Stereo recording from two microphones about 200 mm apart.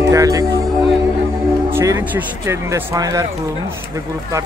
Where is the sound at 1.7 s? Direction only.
10° right (ahead or behind).